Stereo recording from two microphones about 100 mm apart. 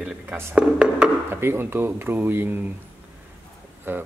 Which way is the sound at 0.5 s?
10° right (ahead or behind).